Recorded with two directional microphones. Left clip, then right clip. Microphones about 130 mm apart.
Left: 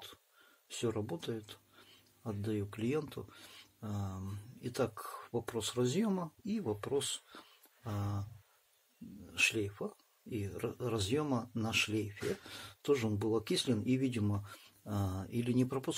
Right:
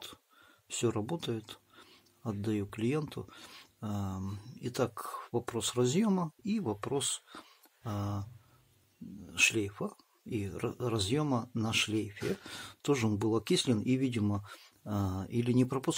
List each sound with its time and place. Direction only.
0.7 s speech: 45° right (ahead or behind)
9.3 s speech: 40° right (ahead or behind)